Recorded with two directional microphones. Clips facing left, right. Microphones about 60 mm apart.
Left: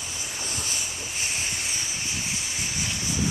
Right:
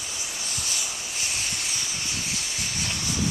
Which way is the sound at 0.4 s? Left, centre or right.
Left.